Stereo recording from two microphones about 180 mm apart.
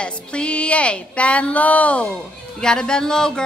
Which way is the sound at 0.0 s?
5° left (ahead or behind).